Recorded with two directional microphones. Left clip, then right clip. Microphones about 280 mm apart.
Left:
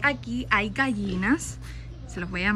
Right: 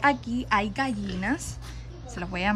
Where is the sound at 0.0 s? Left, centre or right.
Centre.